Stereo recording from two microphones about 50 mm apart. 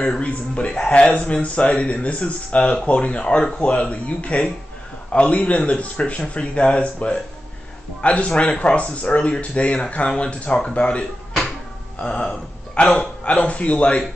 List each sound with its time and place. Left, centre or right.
0.0 s speech: left